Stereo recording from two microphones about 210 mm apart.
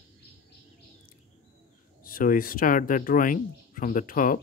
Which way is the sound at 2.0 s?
40° left (ahead or behind).